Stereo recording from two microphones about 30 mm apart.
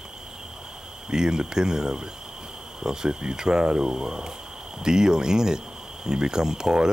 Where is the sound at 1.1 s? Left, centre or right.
Right.